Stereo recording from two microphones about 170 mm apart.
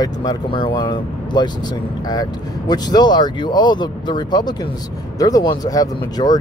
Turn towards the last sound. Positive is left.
turn(degrees=20)  # may be behind; listen again after turning